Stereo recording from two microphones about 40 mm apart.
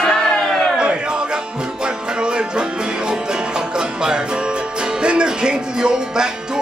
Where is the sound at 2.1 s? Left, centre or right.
Right.